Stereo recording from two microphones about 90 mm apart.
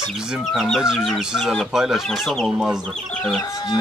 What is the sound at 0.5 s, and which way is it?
Speech, centre (ahead or behind).